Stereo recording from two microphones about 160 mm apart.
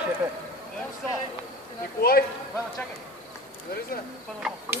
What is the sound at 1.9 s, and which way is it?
Speech, 70° left (ahead or behind).